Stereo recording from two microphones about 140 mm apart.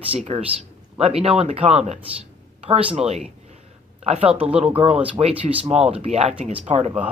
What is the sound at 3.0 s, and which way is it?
Speech, 50° right (ahead or behind).